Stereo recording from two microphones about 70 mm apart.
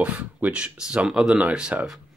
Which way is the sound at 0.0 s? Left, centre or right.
Right.